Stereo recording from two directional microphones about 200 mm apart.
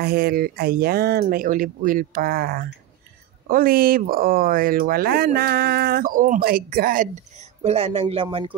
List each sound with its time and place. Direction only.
0.0 s speech: 50° right (ahead or behind); by 8.5 s 25° right (ahead or behind)